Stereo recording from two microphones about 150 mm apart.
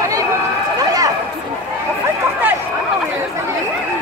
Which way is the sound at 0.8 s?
25° right (ahead or behind).